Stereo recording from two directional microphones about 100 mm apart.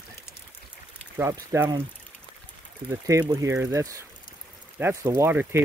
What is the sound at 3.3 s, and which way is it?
Speech, 30° right (ahead or behind).